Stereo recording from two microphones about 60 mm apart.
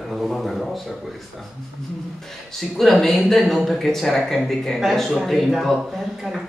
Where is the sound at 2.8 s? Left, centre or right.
Centre.